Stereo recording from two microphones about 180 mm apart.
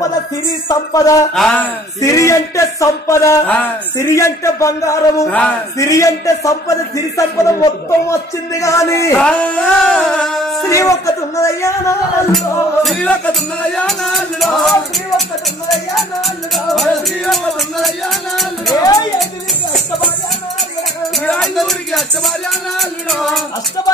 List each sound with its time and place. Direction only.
0.7 s speech: 20° left (ahead or behind)
1.3 s music: 5° left (ahead or behind)
2.0 s a sound: 15° left (ahead or behind)
9.2 s music: 5° left (ahead or behind)
10.7 s a sound: 15° left (ahead or behind)
12.8 s music: 5° left (ahead or behind)
15.7 s music: centre (ahead or behind)
18.8 s speech: 20° left (ahead or behind)
21.3 s music: centre (ahead or behind)